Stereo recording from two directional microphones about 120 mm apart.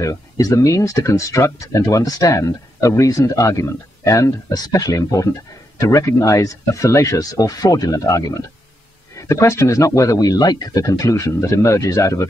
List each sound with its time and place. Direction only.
0.0 s speech: 25° left (ahead or behind)